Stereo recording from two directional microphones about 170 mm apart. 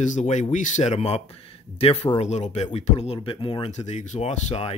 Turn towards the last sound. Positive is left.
turn(degrees=40)  # may be behind; listen again after turning